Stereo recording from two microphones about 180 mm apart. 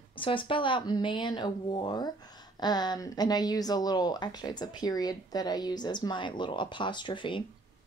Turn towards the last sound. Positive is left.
turn(degrees=25)  # may be behind; listen again after turning